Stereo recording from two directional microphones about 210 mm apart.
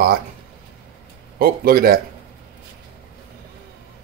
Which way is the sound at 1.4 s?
45° right (ahead or behind).